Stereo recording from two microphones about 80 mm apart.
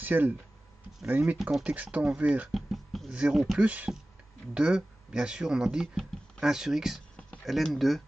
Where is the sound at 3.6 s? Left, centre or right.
Centre.